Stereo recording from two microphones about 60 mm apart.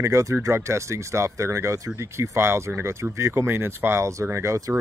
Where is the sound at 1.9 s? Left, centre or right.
Right.